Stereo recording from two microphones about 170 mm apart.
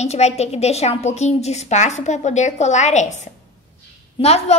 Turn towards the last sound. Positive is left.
turn(degrees=35)  # may be behind; listen again after turning